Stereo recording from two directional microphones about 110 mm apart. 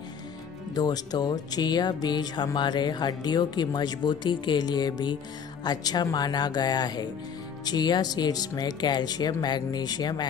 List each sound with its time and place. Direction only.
0.7 s speech: 35° left (ahead or behind)